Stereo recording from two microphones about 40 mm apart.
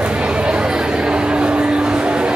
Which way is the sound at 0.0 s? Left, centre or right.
Right.